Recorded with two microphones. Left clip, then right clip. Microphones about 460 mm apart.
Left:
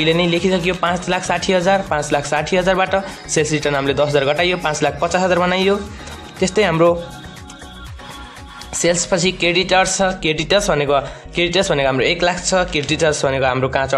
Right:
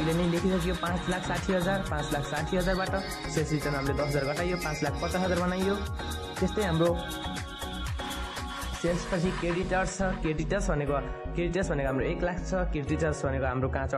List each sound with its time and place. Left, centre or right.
0.0 s speech: left
9.1 s speech: left